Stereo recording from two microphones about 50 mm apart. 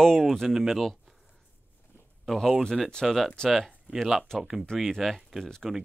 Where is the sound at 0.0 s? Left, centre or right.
Centre.